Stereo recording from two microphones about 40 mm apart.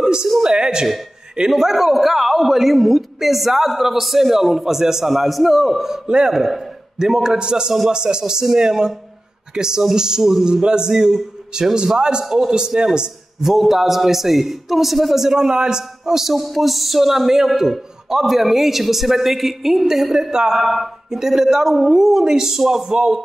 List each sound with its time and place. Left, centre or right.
0.0 s a sound: centre
0.4 s speech: centre
1.5 s a man's voice: centre
6.0 s a man's voice: centre
13.5 s a man's voice: centre
20.6 s a man's voice: centre